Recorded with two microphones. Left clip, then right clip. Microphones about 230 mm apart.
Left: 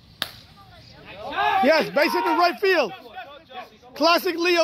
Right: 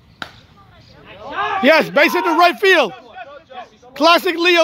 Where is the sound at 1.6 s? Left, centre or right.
Right.